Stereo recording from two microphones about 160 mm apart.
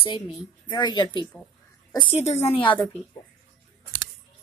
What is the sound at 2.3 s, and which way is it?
Speech, 45° left (ahead or behind).